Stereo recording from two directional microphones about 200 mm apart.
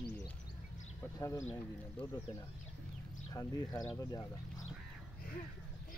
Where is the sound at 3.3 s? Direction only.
15° left (ahead or behind).